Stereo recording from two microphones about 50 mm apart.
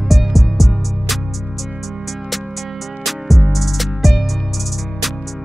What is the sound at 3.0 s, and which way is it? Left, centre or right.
Music, centre.